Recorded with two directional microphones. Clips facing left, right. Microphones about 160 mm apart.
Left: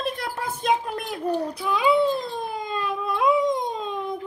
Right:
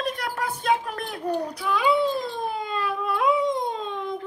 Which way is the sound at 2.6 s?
15° left (ahead or behind).